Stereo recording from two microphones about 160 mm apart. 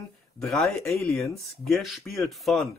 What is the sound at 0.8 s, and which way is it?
Speech, 20° left (ahead or behind).